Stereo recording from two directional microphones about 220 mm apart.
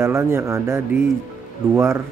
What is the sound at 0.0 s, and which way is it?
Speech, 10° right (ahead or behind).